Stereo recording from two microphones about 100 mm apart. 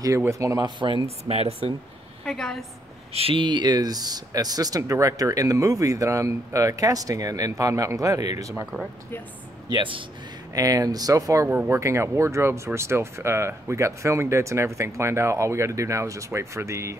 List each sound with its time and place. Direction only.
0.3 s speech: 30° right (ahead or behind)
0.7 s speech: 50° right (ahead or behind)
1.3 s speech: 90° right
2.2 s a woman's voice: 5° left (ahead or behind)
3.1 s speech: 75° right (ahead or behind); by 8.6 s 35° right (ahead or behind)
9.7 s speech: 55° right (ahead or behind)
10.5 s speech: 35° right (ahead or behind)
11.4 s speech: 20° right (ahead or behind)
11.7 s speech: 30° right (ahead or behind)